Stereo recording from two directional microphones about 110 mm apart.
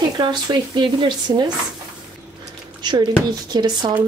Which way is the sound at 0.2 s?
45° right (ahead or behind).